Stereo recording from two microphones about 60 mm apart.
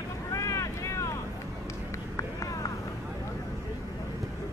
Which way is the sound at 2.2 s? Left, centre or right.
Left.